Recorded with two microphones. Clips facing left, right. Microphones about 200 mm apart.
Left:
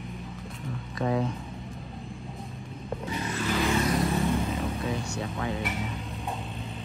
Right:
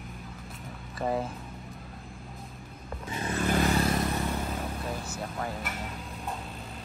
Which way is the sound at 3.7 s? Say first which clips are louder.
Left 1 dB; 30° right (ahead or behind).